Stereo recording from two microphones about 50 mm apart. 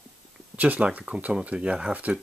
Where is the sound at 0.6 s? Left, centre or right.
Right.